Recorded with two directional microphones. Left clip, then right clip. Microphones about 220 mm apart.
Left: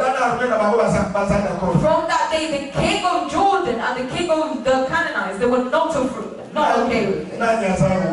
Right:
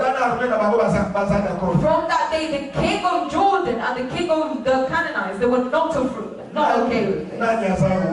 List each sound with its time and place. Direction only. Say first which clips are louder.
0.0 s a sound: left 1 dB; 10° right (ahead or behind)
0.3 s speech: left 1 dB; 10° right (ahead or behind)
1.9 s speech: left 1 dB; 5° right (ahead or behind)